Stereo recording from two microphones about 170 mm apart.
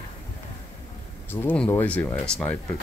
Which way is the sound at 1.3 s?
10° left (ahead or behind).